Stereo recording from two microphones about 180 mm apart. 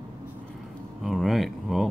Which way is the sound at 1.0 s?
Centre (ahead or behind).